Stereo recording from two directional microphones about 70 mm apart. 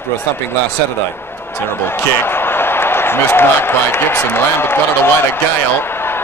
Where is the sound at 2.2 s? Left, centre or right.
Left.